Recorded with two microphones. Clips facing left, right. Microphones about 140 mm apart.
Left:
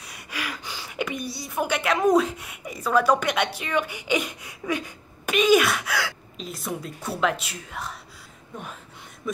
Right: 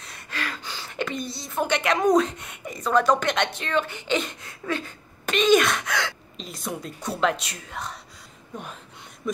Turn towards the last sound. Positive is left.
turn(degrees=5)  # may be behind; listen again after turning